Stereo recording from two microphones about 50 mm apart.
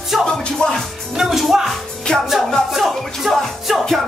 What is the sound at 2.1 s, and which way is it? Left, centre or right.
Music, centre.